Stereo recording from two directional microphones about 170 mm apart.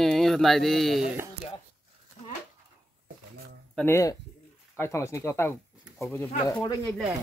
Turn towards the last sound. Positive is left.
turn(degrees=20)  # may be behind; listen again after turning